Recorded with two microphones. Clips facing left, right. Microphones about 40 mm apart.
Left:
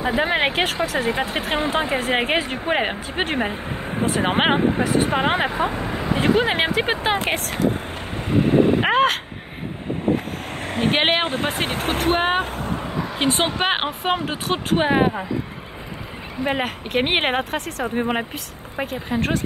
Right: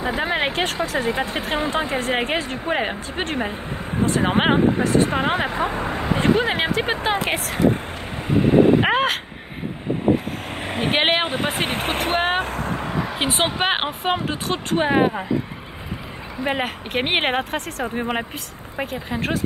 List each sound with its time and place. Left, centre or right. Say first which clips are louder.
0.0 s speech: left 2 dB; centre
5.5 s speech: left 1 dB; centre
6.1 s speech: left 1 dB; centre
7.2 s speech: even; centre
8.3 s a sound: right 2 dB; centre
10.5 s speech: left 1 dB; centre
12.4 s vehicle: right 1 dB; right
13.1 s speech: left 3 dB; centre
14.3 s speech: left 1 dB; centre
16.4 s speech: even; centre